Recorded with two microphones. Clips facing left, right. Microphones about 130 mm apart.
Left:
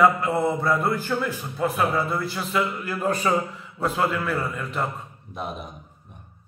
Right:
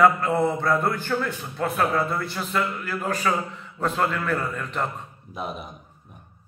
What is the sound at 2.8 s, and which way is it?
A man's voice, 20° left (ahead or behind).